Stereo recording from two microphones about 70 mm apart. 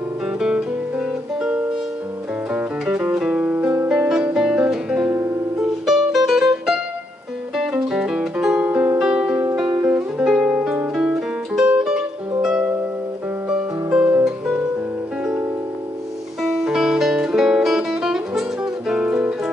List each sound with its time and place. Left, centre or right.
0.4 s guitar: centre
2.8 s music: centre
4.1 s music: centre
7.8 s music: centre
10.1 s music: centre
13.9 s music: right
16.4 s music: centre